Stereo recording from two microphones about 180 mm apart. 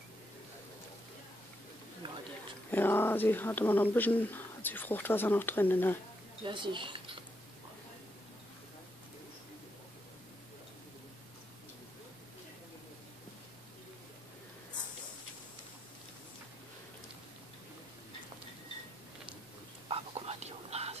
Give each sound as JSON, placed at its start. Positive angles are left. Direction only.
{"t": 2.0, "sound": "a sound", "side_deg": -25}
{"t": 2.7, "sound": "speech", "side_deg": 10}
{"t": 6.4, "sound": "speech", "side_deg": -25}
{"t": 19.9, "sound": "whispering", "side_deg": -35}